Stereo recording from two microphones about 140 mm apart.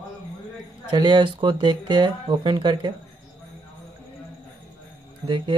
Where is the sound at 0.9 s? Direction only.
35° right (ahead or behind).